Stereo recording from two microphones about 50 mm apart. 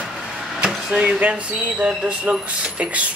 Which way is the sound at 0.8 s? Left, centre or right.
Centre.